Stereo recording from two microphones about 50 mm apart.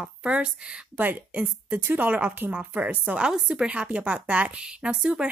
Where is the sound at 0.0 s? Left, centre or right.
Right.